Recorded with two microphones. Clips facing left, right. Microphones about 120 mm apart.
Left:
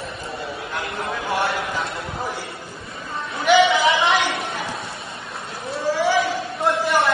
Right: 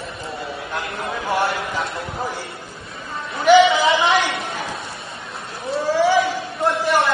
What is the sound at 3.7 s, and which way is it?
Chatter, centre (ahead or behind).